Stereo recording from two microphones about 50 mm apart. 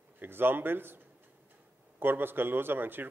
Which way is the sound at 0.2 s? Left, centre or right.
Right.